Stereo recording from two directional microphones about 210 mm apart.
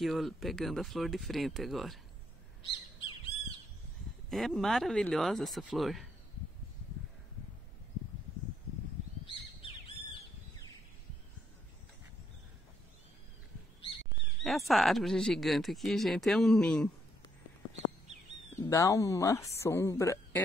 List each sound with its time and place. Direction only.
0.0 s speech: centre (ahead or behind)
2.7 s bird: 25° left (ahead or behind)
4.3 s speech: centre (ahead or behind)
14.4 s speech: centre (ahead or behind)
18.6 s a woman's voice: 15° left (ahead or behind)